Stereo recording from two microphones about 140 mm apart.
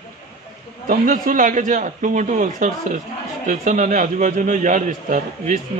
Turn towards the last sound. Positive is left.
turn(degrees=-65)  # may be behind; listen again after turning